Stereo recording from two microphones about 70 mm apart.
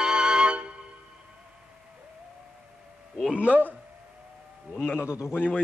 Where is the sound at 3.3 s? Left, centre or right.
Centre.